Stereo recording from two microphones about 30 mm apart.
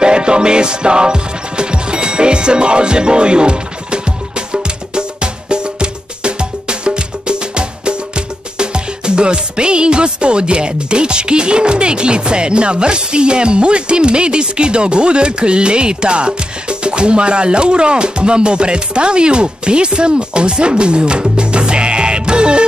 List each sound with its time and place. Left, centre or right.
0.0 s music: right